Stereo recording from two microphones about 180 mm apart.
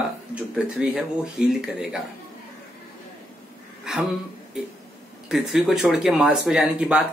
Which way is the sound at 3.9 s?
5° right (ahead or behind).